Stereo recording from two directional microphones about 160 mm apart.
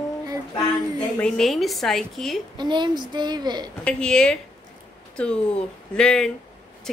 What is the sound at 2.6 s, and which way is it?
A woman's voice, 30° right (ahead or behind).